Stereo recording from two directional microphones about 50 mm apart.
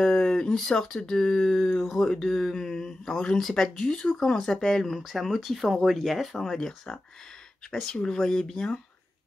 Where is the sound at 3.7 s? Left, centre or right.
Centre.